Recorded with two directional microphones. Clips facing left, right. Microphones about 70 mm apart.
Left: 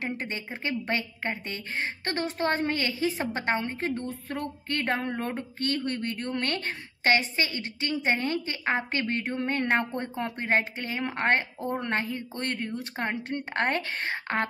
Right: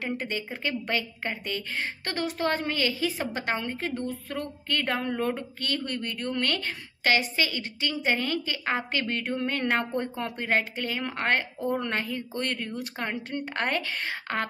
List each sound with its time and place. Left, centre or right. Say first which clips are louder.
0.2 s a woman's voice: right 2 dB; left